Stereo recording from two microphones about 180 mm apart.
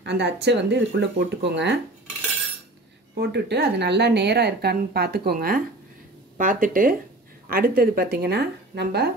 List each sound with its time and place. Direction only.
0.0 s speech: 70° right (ahead or behind)
3.2 s a woman's voice: 65° right (ahead or behind)